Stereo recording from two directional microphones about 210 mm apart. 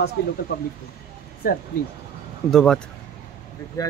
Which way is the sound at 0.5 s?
50° left (ahead or behind).